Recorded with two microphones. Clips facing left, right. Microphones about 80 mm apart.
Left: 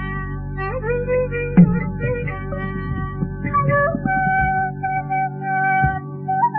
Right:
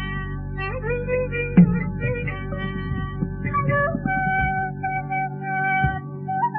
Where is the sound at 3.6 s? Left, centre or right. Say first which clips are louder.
Left 4 dB; left.